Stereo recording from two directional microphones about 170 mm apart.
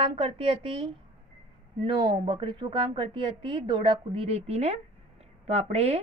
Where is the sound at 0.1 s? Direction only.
30° right (ahead or behind).